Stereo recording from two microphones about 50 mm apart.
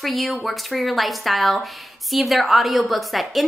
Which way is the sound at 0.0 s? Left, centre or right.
Centre.